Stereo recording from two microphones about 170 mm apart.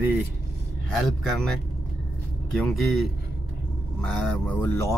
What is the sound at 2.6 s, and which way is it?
Speech, centre (ahead or behind).